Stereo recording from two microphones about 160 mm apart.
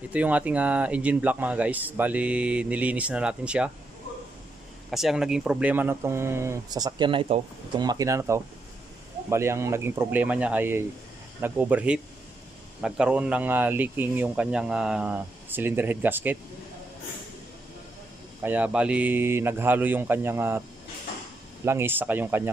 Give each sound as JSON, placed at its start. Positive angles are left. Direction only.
{"t": 0.1, "sound": "speech", "side_deg": -10}
{"t": 4.9, "sound": "speech", "side_deg": 0}
{"t": 7.8, "sound": "speech", "side_deg": -25}
{"t": 18.4, "sound": "speech", "side_deg": -10}
{"t": 21.6, "sound": "speech", "side_deg": -15}